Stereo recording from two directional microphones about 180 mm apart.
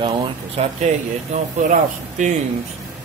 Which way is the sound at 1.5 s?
40° right (ahead or behind).